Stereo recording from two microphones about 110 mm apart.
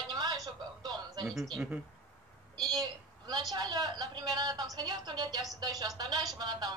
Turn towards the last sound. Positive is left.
turn(degrees=-35)  # may be behind; listen again after turning